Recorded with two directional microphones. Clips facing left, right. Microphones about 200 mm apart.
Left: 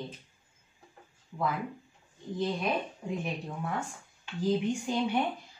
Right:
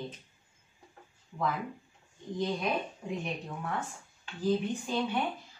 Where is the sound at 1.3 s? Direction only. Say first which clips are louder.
Left 1 dB; 5° left (ahead or behind).